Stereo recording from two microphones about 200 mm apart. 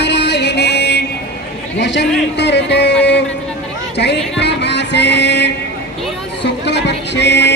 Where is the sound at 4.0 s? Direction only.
60° left (ahead or behind).